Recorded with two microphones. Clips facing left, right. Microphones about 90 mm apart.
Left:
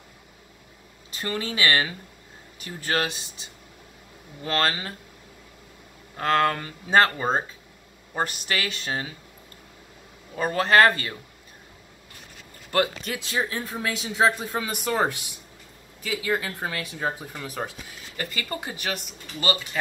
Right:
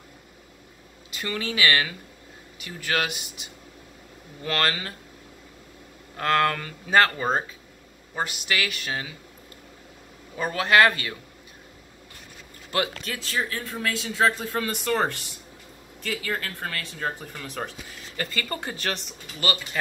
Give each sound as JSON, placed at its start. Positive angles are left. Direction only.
{"t": 1.1, "sound": "speech", "side_deg": 35}
{"t": 4.5, "sound": "speech", "side_deg": 30}
{"t": 6.1, "sound": "speech", "side_deg": 25}
{"t": 8.1, "sound": "speech", "side_deg": 40}
{"t": 10.3, "sound": "speech", "side_deg": 40}
{"t": 13.1, "sound": "speech", "side_deg": 15}